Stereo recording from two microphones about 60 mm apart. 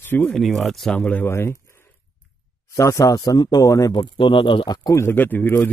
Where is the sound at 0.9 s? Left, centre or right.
Left.